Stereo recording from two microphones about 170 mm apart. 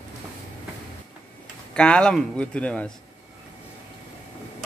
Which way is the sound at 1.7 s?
5° left (ahead or behind).